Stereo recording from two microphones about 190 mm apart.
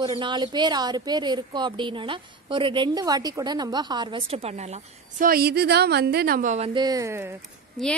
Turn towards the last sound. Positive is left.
turn(degrees=0)  # may be behind; listen again after turning